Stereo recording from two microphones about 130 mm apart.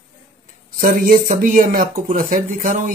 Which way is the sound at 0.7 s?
90° right.